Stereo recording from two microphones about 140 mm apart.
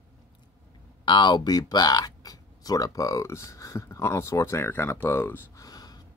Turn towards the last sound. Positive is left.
turn(degrees=25)  # may be behind; listen again after turning